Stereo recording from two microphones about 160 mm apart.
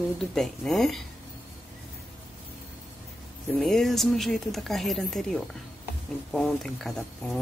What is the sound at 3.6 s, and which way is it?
Speech, centre (ahead or behind).